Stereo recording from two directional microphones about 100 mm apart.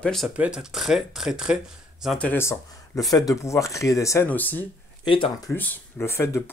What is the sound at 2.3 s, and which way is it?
Speech, 25° left (ahead or behind).